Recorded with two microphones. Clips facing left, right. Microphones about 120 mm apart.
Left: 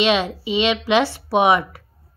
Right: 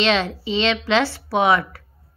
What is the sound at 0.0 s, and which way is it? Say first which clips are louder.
A woman's voice: left 1 dB; 15° left (ahead or behind).